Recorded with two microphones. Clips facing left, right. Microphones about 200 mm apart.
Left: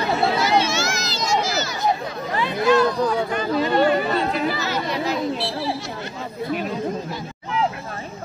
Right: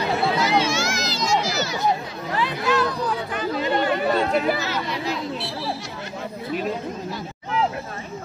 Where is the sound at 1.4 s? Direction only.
45° left (ahead or behind).